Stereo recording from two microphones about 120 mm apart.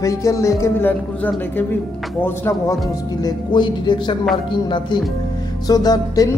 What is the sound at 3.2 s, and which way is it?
Music, 40° left (ahead or behind).